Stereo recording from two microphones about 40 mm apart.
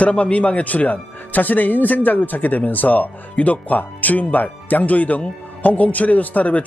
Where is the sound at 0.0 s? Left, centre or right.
Left.